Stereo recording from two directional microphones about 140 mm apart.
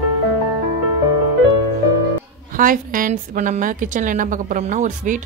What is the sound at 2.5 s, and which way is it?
A woman's voice, 75° right (ahead or behind).